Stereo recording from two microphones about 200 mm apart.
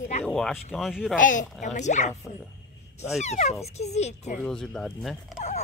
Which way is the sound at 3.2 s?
35° left (ahead or behind).